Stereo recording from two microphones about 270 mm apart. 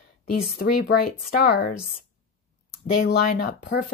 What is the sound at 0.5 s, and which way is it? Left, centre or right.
Speech, left.